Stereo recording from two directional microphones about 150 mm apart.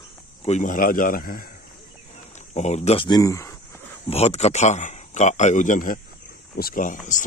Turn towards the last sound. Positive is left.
turn(degrees=65)  # may be behind; listen again after turning